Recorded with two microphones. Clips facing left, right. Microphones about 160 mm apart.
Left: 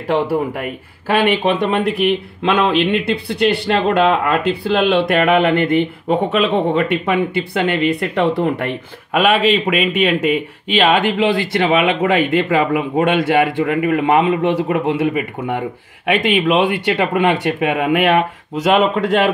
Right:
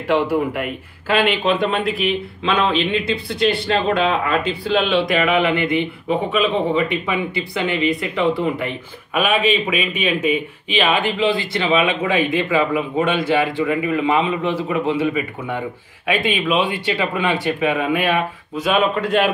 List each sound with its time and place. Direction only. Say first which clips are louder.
1.9 s a man's voice: left 4 dB; 60° left (ahead or behind); by 19.3 s 90° left